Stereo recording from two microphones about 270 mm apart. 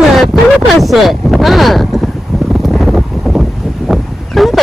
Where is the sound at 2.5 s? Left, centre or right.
Centre.